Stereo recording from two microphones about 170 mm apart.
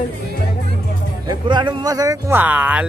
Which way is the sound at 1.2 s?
25° right (ahead or behind).